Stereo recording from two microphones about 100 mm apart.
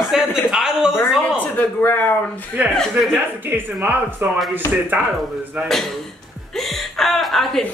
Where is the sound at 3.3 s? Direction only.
20° right (ahead or behind).